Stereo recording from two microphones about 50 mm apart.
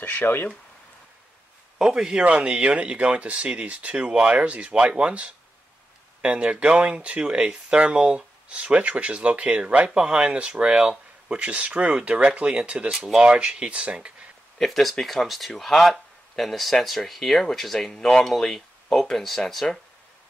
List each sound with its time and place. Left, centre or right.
0.0 s speech: left
1.8 s a man's voice: centre
2.2 s speech: right
8.5 s speech: right
12.9 s speech: centre
13.2 s speech: centre
14.6 s speech: centre